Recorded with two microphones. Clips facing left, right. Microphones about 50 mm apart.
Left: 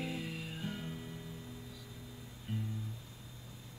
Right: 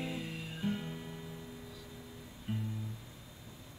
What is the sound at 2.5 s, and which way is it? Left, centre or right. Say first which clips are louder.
Music: right 2 dB; right.